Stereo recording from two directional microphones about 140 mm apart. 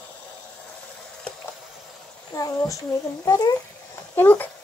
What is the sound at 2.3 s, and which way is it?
A child's voice, 25° left (ahead or behind).